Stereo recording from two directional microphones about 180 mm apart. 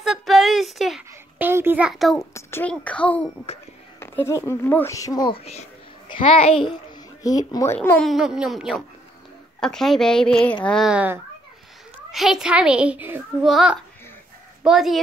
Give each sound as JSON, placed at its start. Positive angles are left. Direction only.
{"t": 0.0, "sound": "a sound", "side_deg": 0}
{"t": 1.5, "sound": "a child's voice", "side_deg": -10}
{"t": 2.3, "sound": "a child's voice", "side_deg": 10}
{"t": 8.0, "sound": "a woman's voice", "side_deg": 0}